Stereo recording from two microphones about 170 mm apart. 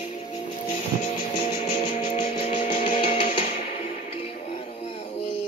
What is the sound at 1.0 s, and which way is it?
Music, 30° left (ahead or behind).